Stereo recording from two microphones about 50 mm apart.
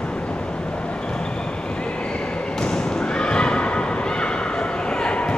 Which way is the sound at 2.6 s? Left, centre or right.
Centre.